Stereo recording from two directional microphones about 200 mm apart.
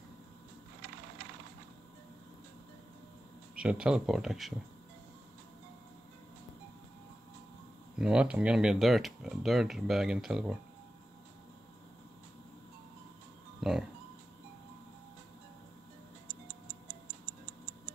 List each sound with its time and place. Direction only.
3.5 s speech: 5° right (ahead or behind)
8.0 s speech: 5° right (ahead or behind)
13.6 s music: centre (ahead or behind)